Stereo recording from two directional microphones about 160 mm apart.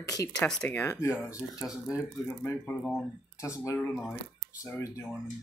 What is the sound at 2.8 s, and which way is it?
Speech, centre (ahead or behind).